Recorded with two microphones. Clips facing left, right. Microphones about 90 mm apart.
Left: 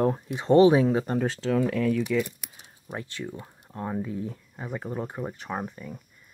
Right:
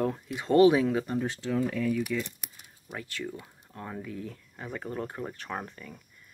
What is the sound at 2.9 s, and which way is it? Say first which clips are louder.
Speech: left 2 dB; 30° left (ahead or behind).